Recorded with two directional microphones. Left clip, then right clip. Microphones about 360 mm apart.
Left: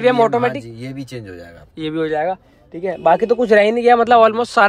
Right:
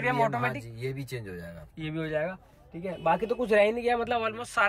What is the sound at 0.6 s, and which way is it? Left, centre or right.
Speech, left.